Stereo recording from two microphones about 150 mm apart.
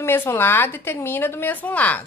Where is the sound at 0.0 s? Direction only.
15° left (ahead or behind).